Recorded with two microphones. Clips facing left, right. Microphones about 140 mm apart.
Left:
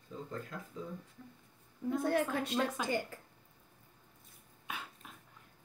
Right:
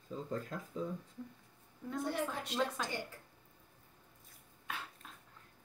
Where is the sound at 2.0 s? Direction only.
55° left (ahead or behind).